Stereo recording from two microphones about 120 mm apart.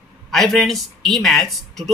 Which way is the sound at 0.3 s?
Centre (ahead or behind).